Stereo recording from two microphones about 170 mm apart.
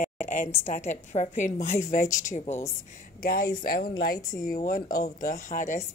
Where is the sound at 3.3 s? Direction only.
60° left (ahead or behind).